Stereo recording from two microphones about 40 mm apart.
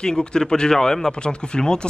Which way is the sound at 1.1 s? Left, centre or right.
Left.